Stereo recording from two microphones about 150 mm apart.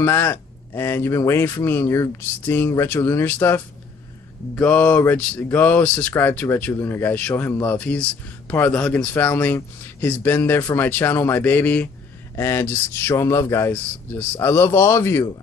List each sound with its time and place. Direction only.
0.0 s speech: 15° left (ahead or behind)